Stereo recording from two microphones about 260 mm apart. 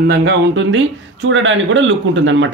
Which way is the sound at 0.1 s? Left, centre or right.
Right.